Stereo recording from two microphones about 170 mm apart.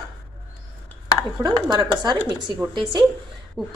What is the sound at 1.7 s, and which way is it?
Speech, 25° right (ahead or behind).